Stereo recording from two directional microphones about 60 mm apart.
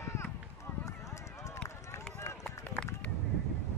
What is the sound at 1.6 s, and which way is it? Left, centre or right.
Run, left.